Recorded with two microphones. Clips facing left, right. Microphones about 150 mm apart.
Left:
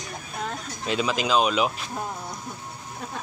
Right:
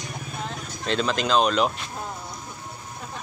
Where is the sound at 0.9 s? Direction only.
5° left (ahead or behind).